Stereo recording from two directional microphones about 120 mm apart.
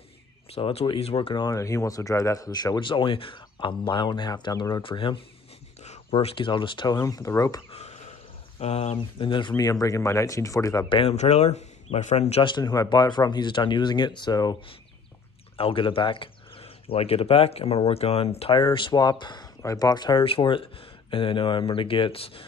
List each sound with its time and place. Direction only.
0.5 s speech: 55° left (ahead or behind); by 4.8 s 30° left (ahead or behind)
4.8 s speech: 45° left (ahead or behind)
7.0 s speech: 30° left (ahead or behind)
7.7 s a sound: 60° left (ahead or behind)
8.5 s speech: 60° left (ahead or behind); by 10.9 s 30° left (ahead or behind)
10.9 s speech: 50° left (ahead or behind)
11.1 s speech: 65° left (ahead or behind)
12.4 s speech: 35° left (ahead or behind)
15.5 s speech: 50° left (ahead or behind)
18.6 s speech: 45° left (ahead or behind)